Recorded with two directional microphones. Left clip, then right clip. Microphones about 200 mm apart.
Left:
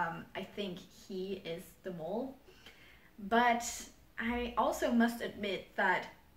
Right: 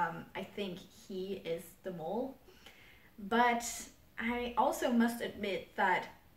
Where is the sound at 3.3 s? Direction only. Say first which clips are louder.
Left 1 dB; 5° right (ahead or behind).